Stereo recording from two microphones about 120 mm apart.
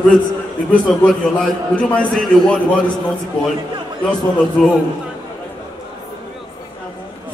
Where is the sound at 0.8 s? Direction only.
5° left (ahead or behind).